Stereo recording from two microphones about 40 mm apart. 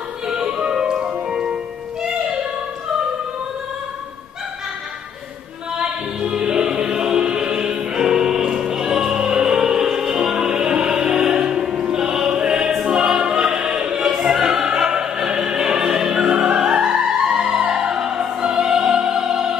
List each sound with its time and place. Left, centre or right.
0.3 s music: centre
1.0 s music: right
1.3 s music: centre
5.7 s music: centre
8.0 s music: centre
12.8 s choir: centre
13.9 s music: centre
14.3 s opera: centre